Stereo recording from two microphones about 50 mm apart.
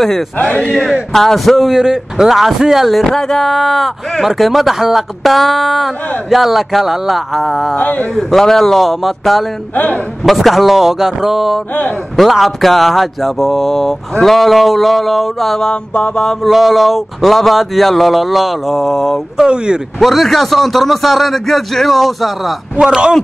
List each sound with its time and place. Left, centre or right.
1.1 s speech: centre
7.8 s mantra: left
8.1 s speech: centre
9.8 s mantra: left
10.2 s speech: centre
15.7 s mantra: centre
16.4 s speech: centre
19.3 s speech: centre
20.0 s speech: centre
22.8 s speech: centre